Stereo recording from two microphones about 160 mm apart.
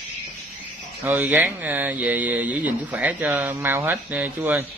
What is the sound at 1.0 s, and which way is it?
A man's voice, 10° right (ahead or behind).